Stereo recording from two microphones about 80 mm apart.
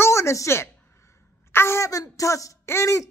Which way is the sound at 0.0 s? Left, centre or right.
Left.